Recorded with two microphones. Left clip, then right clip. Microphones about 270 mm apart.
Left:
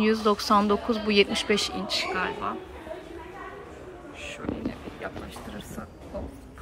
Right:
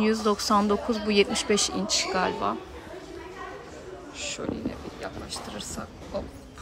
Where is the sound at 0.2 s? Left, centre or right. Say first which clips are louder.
Left 1 dB; centre.